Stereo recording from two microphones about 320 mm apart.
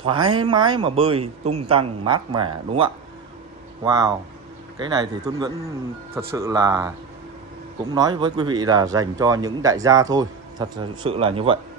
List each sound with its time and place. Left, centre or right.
0.0 s speech: centre